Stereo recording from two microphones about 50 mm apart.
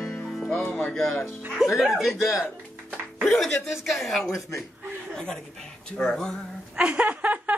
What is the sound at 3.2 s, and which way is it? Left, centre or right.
Music, centre.